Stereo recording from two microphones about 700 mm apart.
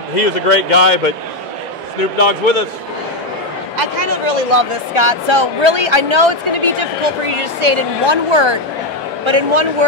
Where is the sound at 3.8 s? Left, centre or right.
Right.